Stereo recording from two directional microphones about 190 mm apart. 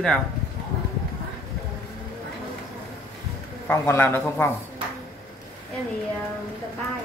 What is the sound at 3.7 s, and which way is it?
Speech, 10° left (ahead or behind).